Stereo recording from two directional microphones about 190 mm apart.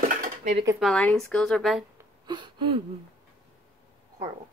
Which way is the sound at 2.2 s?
25° right (ahead or behind).